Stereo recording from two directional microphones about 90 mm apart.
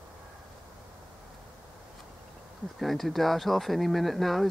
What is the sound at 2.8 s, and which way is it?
Speech, centre (ahead or behind).